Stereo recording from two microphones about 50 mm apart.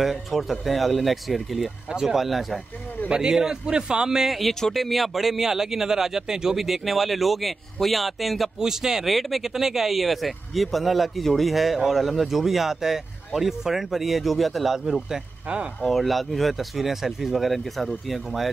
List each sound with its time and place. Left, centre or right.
0.0 s a man's voice: centre
3.1 s a man's voice: centre
4.3 s a man's voice: centre
15.4 s speech: right
15.8 s speech: centre